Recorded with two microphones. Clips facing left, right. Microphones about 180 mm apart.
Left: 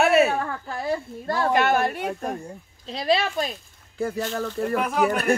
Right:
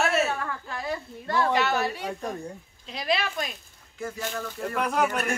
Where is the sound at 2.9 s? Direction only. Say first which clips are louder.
Left 5 dB; 30° left (ahead or behind).